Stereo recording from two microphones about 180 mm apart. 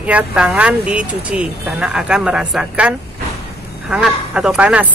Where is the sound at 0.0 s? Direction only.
10° right (ahead or behind).